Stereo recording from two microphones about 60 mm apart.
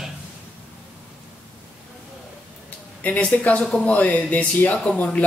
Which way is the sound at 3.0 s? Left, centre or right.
Left.